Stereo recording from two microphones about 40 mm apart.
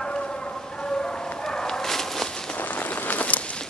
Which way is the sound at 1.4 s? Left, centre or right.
Centre.